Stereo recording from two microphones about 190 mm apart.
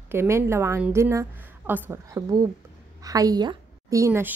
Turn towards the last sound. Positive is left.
turn(degrees=-15)  # may be behind; listen again after turning